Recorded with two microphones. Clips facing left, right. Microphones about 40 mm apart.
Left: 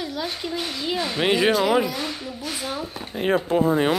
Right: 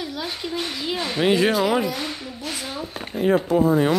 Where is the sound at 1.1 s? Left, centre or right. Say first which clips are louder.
Right 2 dB; centre.